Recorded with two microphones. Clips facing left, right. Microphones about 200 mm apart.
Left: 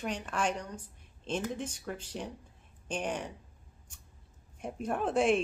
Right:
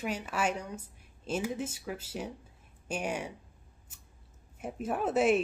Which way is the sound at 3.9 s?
5° right (ahead or behind).